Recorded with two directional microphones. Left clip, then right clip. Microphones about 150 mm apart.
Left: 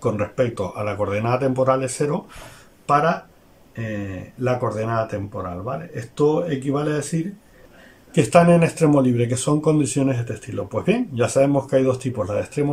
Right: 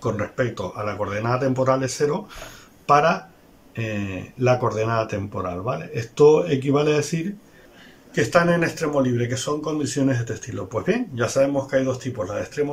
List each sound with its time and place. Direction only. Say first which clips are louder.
0.0 s speech: left 3 dB; 15° left (ahead or behind); by 7.2 s 5° right (ahead or behind)
8.1 s speech: left 4 dB; 20° left (ahead or behind)